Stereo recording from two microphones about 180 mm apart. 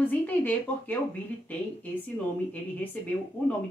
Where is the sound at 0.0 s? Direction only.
10° left (ahead or behind).